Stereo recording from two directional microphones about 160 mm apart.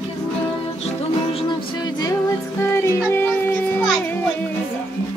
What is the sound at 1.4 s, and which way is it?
Music, 30° left (ahead or behind).